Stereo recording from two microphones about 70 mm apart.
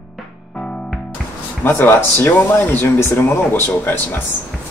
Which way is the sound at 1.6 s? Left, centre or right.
Left.